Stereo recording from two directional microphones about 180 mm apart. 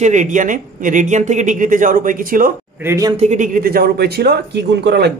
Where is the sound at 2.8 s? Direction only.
15° right (ahead or behind).